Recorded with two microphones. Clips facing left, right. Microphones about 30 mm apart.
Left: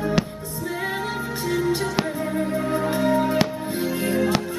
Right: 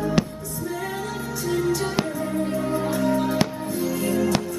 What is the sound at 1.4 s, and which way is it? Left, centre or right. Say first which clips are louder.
Music: even; left.